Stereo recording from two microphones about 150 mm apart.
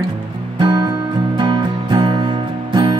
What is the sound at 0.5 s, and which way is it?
Music, 30° right (ahead or behind).